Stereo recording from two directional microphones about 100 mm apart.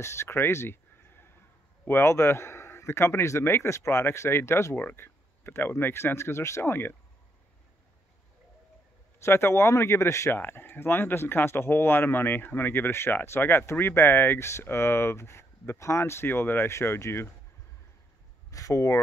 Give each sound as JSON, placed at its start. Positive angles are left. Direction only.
{"t": 0.0, "sound": "a sound", "side_deg": 25}
{"t": 1.9, "sound": "speech", "side_deg": 25}
{"t": 9.2, "sound": "speech", "side_deg": 25}
{"t": 18.5, "sound": "speech", "side_deg": 35}